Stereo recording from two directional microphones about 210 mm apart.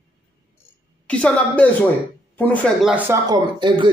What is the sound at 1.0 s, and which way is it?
A woman's voice, 5° left (ahead or behind).